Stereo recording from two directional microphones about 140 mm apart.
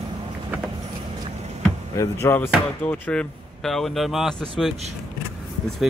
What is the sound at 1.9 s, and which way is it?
Speech, 20° left (ahead or behind).